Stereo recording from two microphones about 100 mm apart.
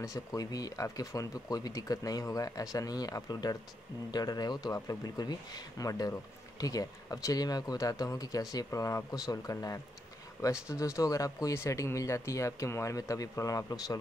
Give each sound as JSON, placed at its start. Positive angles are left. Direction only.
{"t": 0.0, "sound": "a man's voice", "side_deg": 35}